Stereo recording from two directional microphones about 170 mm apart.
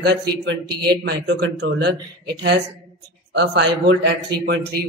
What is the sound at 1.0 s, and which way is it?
Speech, 85° right.